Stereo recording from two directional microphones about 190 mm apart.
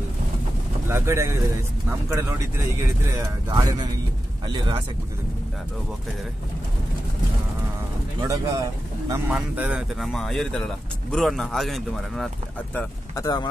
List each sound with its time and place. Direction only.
0.8 s speech: 15° right (ahead or behind)
8.2 s speech: 20° right (ahead or behind)
9.1 s speech: 5° right (ahead or behind)
12.7 s speech: 15° left (ahead or behind)